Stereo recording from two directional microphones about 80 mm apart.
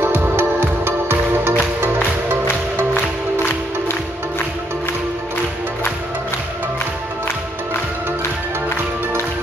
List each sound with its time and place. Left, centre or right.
0.0 s music: right